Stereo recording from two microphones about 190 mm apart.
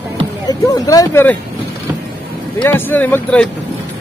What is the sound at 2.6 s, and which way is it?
Speech, 10° left (ahead or behind).